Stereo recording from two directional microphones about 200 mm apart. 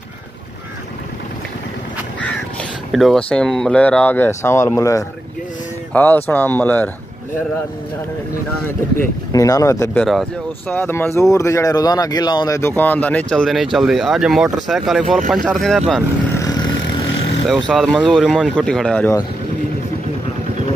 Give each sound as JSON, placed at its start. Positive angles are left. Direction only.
{"t": 2.9, "sound": "speech", "side_deg": 0}
{"t": 9.3, "sound": "speech", "side_deg": 15}
{"t": 16.3, "sound": "vehicle", "side_deg": 20}
{"t": 17.5, "sound": "speech", "side_deg": 0}